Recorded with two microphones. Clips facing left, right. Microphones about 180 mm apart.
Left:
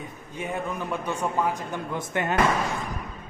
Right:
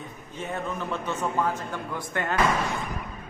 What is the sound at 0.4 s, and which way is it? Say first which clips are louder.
A man's voice: left 1 dB; 10° left (ahead or behind).